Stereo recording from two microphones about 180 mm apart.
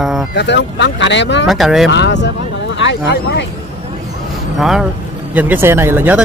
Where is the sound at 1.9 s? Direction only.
75° left (ahead or behind).